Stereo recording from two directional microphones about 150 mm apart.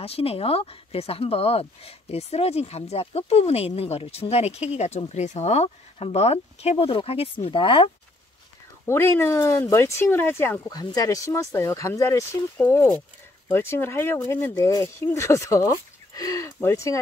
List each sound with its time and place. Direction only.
0.0 s speech: 40° left (ahead or behind)
8.8 s speech: 15° left (ahead or behind)